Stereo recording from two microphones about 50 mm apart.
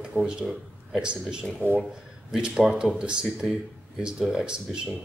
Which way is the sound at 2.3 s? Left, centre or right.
Centre.